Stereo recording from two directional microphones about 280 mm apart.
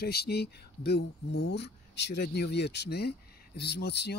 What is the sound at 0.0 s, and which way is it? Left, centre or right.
Speech, left.